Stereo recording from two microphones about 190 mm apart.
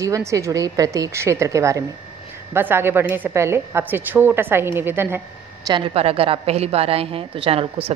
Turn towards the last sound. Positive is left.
turn(degrees=-30)  # may be behind; listen again after turning